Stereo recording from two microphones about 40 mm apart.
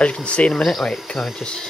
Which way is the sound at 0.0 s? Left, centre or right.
Left.